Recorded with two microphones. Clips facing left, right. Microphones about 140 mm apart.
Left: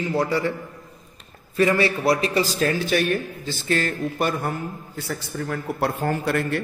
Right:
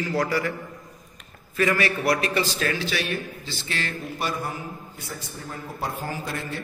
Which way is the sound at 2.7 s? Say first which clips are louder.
Left 6 dB; 50° left (ahead or behind).